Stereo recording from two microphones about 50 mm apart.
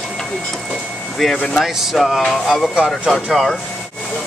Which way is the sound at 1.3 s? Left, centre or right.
Centre.